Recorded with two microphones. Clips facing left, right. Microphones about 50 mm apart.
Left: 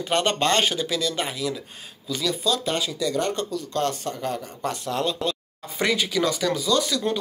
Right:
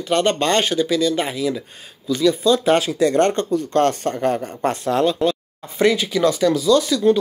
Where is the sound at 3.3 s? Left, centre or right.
Right.